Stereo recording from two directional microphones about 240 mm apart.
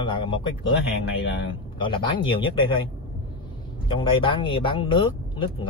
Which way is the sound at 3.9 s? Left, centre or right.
Left.